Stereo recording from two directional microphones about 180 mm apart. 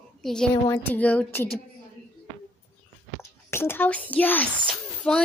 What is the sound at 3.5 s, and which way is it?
A woman's voice, 10° left (ahead or behind).